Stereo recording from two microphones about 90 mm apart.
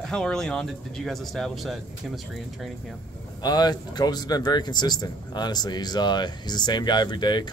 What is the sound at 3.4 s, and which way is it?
Speech, 50° left (ahead or behind).